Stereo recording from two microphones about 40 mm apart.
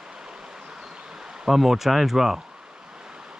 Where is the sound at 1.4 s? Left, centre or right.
Centre.